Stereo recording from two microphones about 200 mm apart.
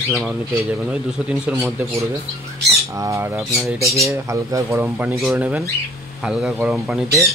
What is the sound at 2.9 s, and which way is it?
Speech, 15° right (ahead or behind).